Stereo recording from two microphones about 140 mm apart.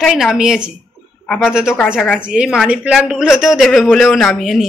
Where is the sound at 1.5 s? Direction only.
5° right (ahead or behind).